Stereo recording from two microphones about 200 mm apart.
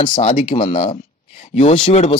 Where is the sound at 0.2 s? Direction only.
35° left (ahead or behind).